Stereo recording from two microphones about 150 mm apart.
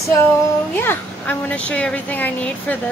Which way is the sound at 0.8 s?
10° left (ahead or behind).